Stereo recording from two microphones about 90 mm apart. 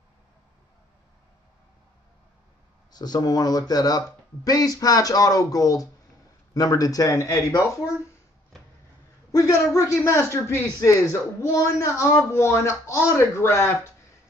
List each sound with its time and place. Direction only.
2.9 s a man's voice: 50° left (ahead or behind)
8.5 s a sound: 5° left (ahead or behind)
9.3 s a man's voice: 40° left (ahead or behind)